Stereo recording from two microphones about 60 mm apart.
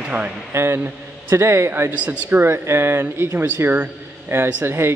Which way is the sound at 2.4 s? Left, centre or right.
Right.